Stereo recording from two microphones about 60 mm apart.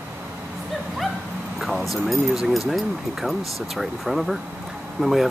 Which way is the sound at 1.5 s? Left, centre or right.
Centre.